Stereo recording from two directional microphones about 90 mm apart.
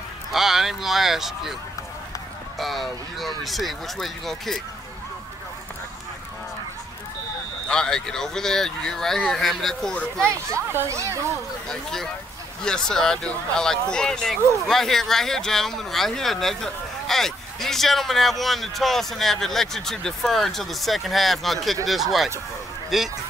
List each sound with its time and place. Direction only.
0.3 s speech: 5° right (ahead or behind)
2.6 s speech: centre (ahead or behind)
7.6 s speech: 10° left (ahead or behind)
10.5 s speech: 30° right (ahead or behind)
11.7 s speech: 5° left (ahead or behind)